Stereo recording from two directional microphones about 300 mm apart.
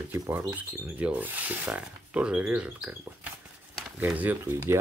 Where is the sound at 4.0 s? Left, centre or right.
Centre.